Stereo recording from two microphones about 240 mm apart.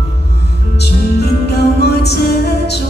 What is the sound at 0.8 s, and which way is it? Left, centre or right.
Music, left.